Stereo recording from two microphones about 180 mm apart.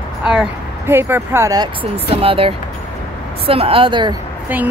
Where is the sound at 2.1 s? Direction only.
30° right (ahead or behind).